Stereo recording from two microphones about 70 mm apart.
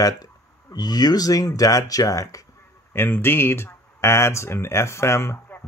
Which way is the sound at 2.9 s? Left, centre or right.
Left.